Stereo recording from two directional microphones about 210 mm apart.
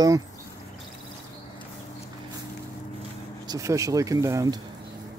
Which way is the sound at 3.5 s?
15° right (ahead or behind).